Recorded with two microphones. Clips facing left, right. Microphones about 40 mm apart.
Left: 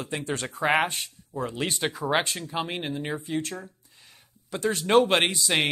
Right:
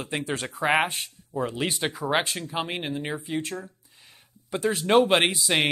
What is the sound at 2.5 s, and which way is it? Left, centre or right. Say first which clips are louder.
Speech: right 1 dB; centre.